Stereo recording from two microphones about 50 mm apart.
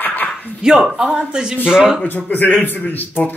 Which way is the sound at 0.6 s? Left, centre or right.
Centre.